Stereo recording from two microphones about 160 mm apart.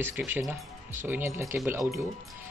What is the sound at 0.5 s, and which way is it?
Speech, 10° right (ahead or behind).